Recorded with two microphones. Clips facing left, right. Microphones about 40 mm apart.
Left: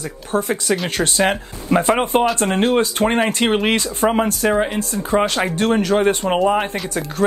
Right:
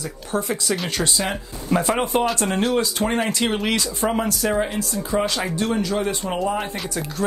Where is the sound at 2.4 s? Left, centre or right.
Left.